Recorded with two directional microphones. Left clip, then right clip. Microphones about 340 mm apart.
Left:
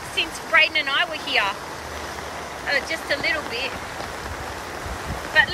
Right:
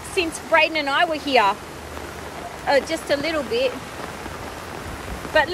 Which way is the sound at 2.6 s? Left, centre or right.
Centre.